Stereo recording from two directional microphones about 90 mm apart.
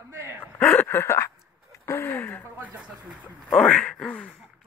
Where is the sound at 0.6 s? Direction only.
20° left (ahead or behind).